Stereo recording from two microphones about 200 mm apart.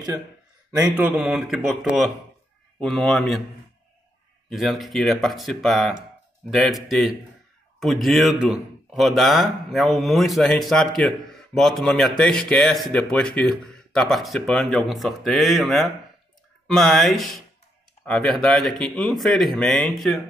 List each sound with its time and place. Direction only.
0.7 s a man's voice: 15° right (ahead or behind)
1.1 s speech: 5° right (ahead or behind)
4.5 s speech: centre (ahead or behind)